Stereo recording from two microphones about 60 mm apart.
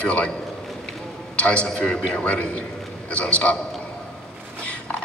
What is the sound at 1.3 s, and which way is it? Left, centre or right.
A woman's voice, centre.